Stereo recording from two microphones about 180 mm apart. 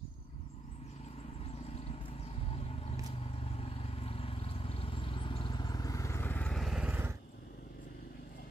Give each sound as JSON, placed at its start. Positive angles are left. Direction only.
{"t": 1.7, "sound": "vehicle", "side_deg": 35}